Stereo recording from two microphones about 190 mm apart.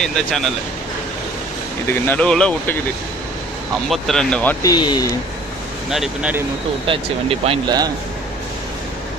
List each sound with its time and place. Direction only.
0.0 s speech: 5° left (ahead or behind)
1.9 s speech: 10° left (ahead or behind)
3.9 s speech: 5° left (ahead or behind)
4.6 s speech: 20° left (ahead or behind)
5.9 s speech: 5° right (ahead or behind)
6.9 s speech: 30° right (ahead or behind)